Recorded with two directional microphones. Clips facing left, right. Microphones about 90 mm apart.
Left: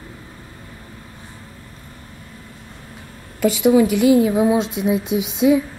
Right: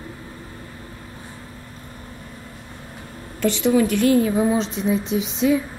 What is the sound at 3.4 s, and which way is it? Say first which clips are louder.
A woman's voice: left 4 dB; 5° left (ahead or behind).